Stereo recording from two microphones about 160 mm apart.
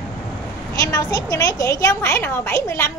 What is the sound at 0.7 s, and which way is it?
Speech, 20° left (ahead or behind).